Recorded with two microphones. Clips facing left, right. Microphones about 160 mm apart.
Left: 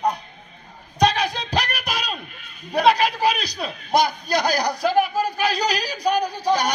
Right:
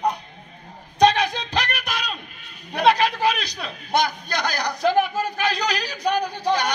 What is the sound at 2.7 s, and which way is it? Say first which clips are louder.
Speech: left 1 dB; 35° left (ahead or behind).